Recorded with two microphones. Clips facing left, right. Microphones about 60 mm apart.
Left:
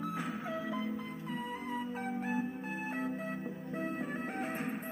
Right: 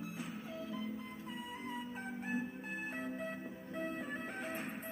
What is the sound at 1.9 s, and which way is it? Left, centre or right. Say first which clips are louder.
Music: left 5 dB; left.